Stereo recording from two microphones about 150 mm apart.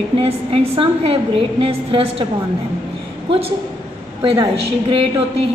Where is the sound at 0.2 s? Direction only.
40° right (ahead or behind).